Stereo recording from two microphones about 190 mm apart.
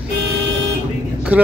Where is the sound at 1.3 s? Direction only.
10° right (ahead or behind).